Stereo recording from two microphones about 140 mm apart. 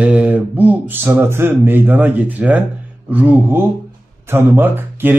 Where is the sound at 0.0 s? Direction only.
10° right (ahead or behind).